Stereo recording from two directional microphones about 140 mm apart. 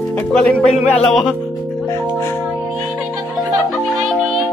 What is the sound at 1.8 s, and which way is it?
Music, 20° left (ahead or behind).